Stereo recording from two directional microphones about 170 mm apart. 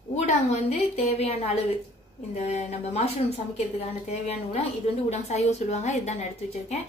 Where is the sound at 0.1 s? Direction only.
40° left (ahead or behind).